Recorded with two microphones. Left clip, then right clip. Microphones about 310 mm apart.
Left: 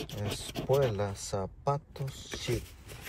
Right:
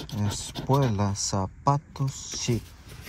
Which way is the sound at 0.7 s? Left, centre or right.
Right.